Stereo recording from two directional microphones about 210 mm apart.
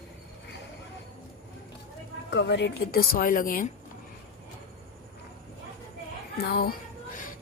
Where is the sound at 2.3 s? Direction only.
55° left (ahead or behind); by 3.7 s 40° left (ahead or behind).